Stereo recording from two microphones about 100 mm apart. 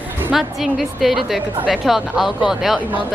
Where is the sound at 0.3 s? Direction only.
Centre (ahead or behind).